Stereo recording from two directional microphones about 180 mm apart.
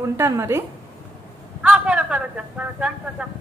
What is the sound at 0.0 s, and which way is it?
A man's voice, 15° right (ahead or behind).